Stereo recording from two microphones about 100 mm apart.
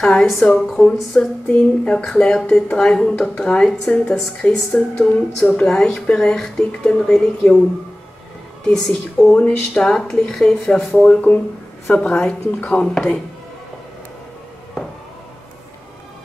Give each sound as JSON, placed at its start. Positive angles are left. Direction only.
{"t": 0.0, "sound": "speech", "side_deg": 5}
{"t": 0.3, "sound": "a woman's voice", "side_deg": 20}
{"t": 0.6, "sound": "a woman's voice", "side_deg": 5}
{"t": 8.6, "sound": "a woman's voice", "side_deg": 5}
{"t": 11.1, "sound": "speech", "side_deg": 15}